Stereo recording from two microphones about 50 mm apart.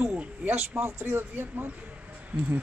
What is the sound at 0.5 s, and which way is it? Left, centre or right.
Speech, right.